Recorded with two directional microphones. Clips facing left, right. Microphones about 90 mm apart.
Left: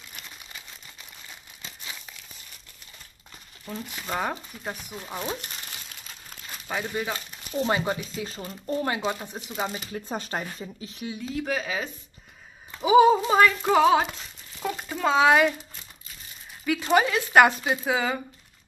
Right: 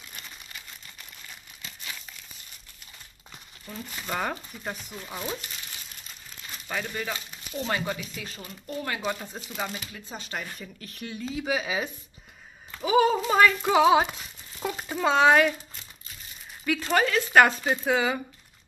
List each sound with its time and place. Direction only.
3.9 s speech: 5° left (ahead or behind)
4.9 s speech: 15° left (ahead or behind)
6.7 s speech: 15° left (ahead or behind)
7.6 s speech: 30° left (ahead or behind)
8.9 s speech: 20° left (ahead or behind)
9.9 s speech: 45° left (ahead or behind)
11.0 s speech: 5° left (ahead or behind)
12.8 s speech: 15° left (ahead or behind)
13.4 s speech: centre (ahead or behind)
14.6 s a sound: 5° right (ahead or behind)
16.6 s speech: 10° left (ahead or behind)